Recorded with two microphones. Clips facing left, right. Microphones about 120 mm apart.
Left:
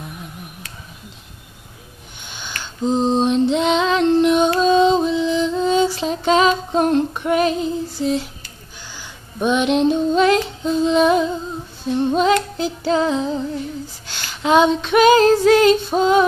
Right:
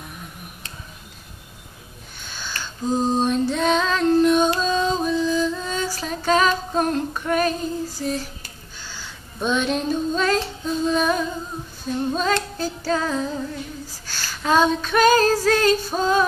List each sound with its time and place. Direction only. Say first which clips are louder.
2.2 s female singing: even; 20° left (ahead or behind)
4.6 s music: left 8 dB; 20° left (ahead or behind)
8.9 s a sound: left 5 dB; 15° left (ahead or behind)
9.8 s female singing: left 6 dB; 20° left (ahead or behind)